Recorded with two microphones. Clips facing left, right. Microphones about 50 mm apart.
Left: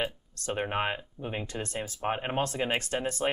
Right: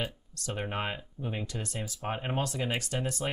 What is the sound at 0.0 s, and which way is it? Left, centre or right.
Speech, left.